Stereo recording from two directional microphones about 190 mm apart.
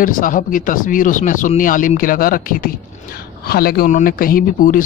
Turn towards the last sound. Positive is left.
turn(degrees=45)  # may be behind; listen again after turning